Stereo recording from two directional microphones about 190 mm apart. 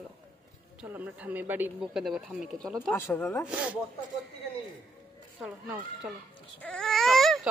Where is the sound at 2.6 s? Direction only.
10° left (ahead or behind).